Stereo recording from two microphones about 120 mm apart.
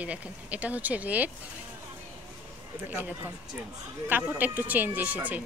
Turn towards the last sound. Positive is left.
turn(degrees=-15)  # may be behind; listen again after turning